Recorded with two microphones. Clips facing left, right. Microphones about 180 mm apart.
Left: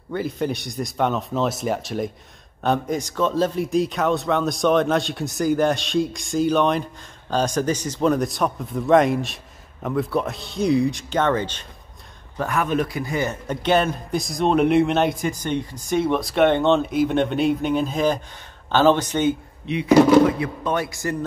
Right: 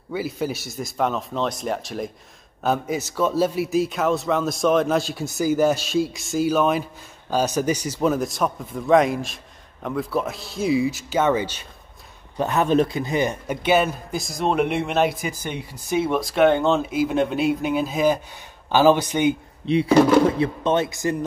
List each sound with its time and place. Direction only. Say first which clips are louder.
0.1 s a man's voice: left 1 dB; 5° right (ahead or behind)
12.4 s a man's voice: right 3 dB; 25° right (ahead or behind)
19.6 s speech: left 1 dB; 30° right (ahead or behind)